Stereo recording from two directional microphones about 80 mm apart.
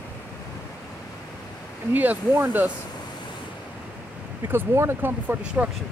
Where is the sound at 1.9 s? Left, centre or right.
Right.